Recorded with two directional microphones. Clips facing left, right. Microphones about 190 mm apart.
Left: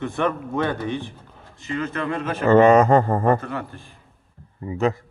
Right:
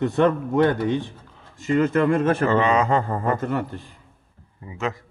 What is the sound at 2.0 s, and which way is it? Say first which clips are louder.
Speech: right 7 dB; 50° right (ahead or behind).